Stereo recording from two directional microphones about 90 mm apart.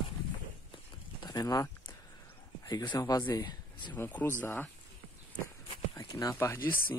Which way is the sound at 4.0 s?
20° left (ahead or behind).